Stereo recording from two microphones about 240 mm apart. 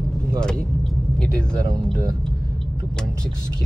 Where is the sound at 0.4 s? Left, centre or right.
Centre.